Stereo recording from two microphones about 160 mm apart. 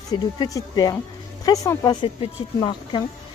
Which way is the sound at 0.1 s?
25° left (ahead or behind).